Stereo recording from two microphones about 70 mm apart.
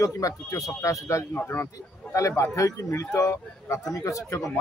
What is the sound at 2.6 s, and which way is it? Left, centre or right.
Speech, left.